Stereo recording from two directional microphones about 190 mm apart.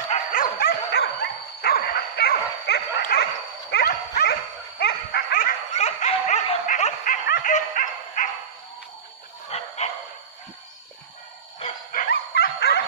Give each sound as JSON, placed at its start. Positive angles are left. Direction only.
{"t": 0.1, "sound": "dog", "side_deg": 45}
{"t": 5.8, "sound": "dog", "side_deg": 35}
{"t": 9.5, "sound": "dog", "side_deg": 35}
{"t": 11.9, "sound": "dog", "side_deg": 50}